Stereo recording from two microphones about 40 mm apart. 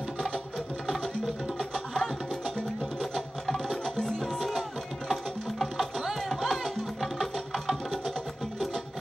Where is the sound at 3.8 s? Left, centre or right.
Centre.